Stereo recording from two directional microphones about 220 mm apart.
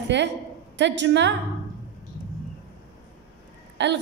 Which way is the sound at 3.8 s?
55° right (ahead or behind).